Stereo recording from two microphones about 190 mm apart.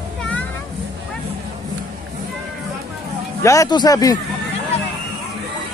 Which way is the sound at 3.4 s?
15° left (ahead or behind).